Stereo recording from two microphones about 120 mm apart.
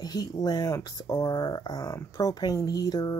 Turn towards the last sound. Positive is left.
turn(degrees=30)  # may be behind; listen again after turning